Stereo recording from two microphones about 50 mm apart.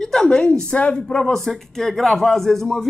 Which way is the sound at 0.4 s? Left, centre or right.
Left.